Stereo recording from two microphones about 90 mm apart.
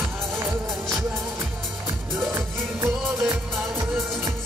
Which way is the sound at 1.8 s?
25° right (ahead or behind).